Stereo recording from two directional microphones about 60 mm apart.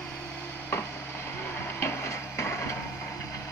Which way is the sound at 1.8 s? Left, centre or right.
Left.